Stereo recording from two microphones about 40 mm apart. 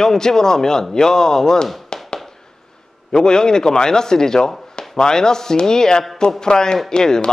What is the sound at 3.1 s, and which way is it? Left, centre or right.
A man's voice, centre.